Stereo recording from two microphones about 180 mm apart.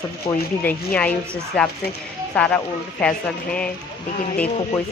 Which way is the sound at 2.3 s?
5° left (ahead or behind).